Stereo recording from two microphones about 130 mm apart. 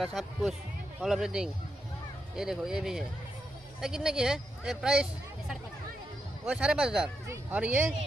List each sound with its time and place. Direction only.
0.0 s speech: centre (ahead or behind)
6.4 s a man's voice: 10° right (ahead or behind)